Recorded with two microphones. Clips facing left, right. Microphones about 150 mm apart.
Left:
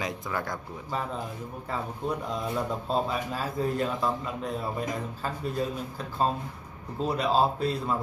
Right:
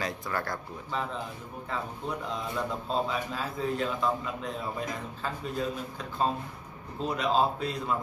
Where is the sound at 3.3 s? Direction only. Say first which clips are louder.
Left 3 dB; 40° left (ahead or behind).